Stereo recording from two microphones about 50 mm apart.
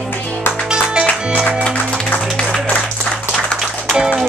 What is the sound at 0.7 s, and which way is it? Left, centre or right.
Music, centre.